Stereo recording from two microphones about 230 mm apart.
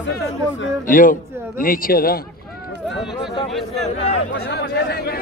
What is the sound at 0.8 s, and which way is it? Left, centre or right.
Speech, left.